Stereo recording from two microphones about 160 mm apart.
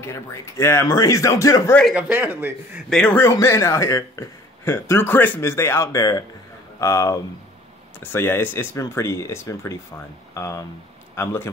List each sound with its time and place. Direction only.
0.0 s a man's voice: 15° left (ahead or behind)
2.0 s a man's voice: 10° right (ahead or behind)
2.9 s a man's voice: 10° left (ahead or behind)